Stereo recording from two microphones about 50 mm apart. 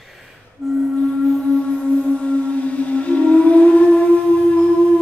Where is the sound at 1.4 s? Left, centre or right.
Left.